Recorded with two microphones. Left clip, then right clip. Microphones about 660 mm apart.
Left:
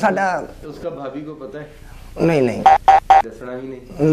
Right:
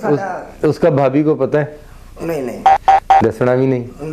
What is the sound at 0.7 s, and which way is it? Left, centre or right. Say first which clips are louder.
Speech: right 15 dB; right.